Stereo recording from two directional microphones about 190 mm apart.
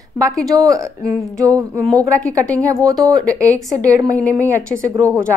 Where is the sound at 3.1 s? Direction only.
5° left (ahead or behind).